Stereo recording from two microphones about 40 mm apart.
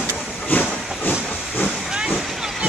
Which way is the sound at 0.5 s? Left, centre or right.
Left.